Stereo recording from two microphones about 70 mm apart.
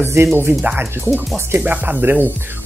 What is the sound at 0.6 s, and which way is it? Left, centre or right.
Speech, right.